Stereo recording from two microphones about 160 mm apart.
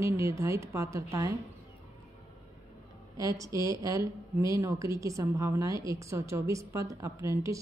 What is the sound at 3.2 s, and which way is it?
A woman's voice, 20° right (ahead or behind).